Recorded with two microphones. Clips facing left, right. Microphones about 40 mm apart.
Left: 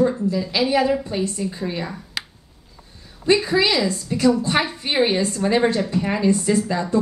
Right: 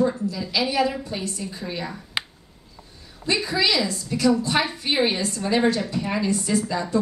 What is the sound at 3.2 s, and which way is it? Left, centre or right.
A woman's voice, left.